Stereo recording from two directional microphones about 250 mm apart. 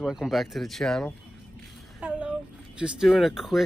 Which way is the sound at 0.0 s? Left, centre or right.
Centre.